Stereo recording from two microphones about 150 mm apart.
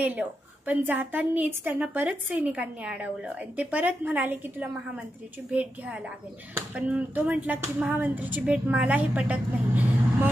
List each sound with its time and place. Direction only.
0.0 s a woman's voice: 10° right (ahead or behind)